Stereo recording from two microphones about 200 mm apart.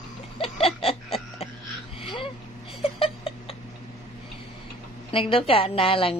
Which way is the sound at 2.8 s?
30° left (ahead or behind).